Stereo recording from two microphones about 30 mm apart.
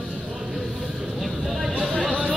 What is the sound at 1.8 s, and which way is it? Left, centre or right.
Chatter, centre.